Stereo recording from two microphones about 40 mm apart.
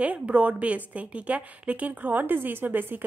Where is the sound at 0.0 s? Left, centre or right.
Right.